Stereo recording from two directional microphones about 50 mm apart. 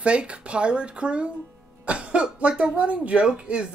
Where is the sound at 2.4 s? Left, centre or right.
Right.